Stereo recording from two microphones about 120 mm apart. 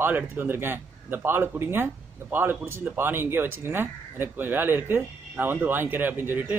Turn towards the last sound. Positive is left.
turn(degrees=-15)  # may be behind; listen again after turning